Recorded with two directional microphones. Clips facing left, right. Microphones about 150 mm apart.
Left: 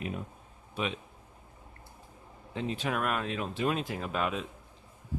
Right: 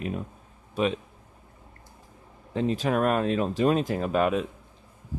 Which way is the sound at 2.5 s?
40° right (ahead or behind).